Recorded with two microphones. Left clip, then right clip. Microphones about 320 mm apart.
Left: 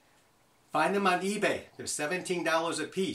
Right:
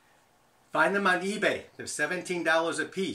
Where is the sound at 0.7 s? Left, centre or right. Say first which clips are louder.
Right 2 dB; centre.